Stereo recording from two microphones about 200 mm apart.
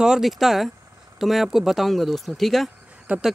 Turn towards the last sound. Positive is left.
turn(degrees=0)  # may be behind; listen again after turning